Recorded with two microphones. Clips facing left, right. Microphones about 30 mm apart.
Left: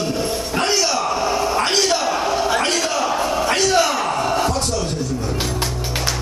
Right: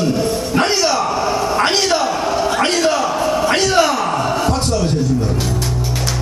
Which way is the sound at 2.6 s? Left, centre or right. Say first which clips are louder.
Right 5 dB; centre.